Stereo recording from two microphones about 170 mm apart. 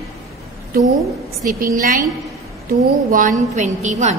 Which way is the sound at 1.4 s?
55° right (ahead or behind).